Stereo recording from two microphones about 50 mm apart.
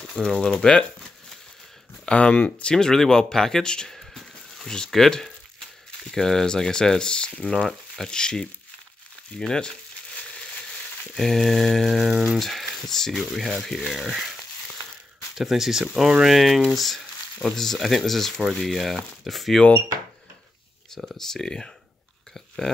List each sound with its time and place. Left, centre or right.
0.2 s speech: centre
2.0 s speech: left
2.7 s speech: centre
3.9 s a sound: centre
4.6 s speech: centre
11.1 s speech: centre
13.3 s speech: centre
21.2 s speech: centre